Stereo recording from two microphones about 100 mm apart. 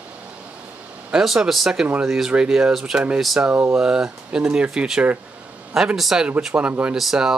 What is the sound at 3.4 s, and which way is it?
Speech, 25° right (ahead or behind).